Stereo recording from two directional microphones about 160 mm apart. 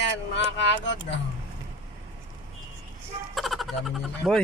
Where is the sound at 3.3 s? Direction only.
Centre (ahead or behind).